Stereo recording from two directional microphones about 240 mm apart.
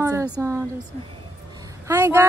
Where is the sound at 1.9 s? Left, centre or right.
Centre.